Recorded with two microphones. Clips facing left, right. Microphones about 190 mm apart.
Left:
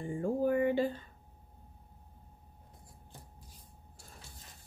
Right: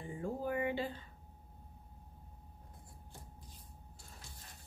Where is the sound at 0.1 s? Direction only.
50° left (ahead or behind).